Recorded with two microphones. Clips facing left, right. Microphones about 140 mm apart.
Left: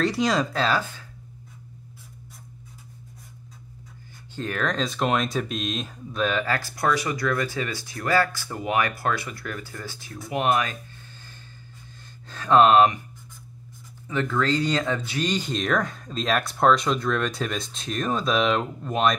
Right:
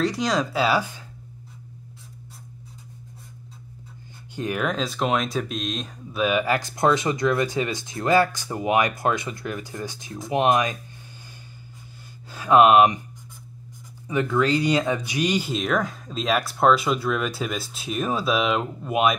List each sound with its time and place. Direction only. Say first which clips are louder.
0.0 s speech: even; centre (ahead or behind)
4.4 s speech: right 1 dB; 10° right (ahead or behind)
12.3 s speech: right 1 dB; 10° right (ahead or behind)
14.0 s speech: right 3 dB; 15° right (ahead or behind)